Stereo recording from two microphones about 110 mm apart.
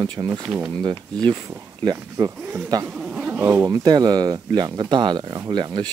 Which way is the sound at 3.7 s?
40° right (ahead or behind).